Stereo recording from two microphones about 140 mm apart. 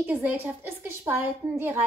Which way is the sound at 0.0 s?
10° right (ahead or behind).